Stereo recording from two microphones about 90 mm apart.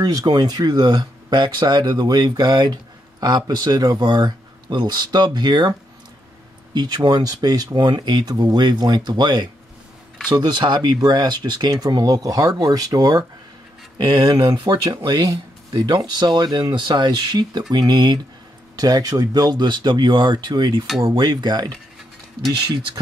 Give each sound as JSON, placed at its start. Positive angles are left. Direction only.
{"t": 0.0, "sound": "speech", "side_deg": -45}